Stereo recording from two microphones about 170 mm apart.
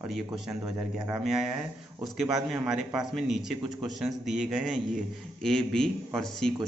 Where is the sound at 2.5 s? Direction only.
5° right (ahead or behind).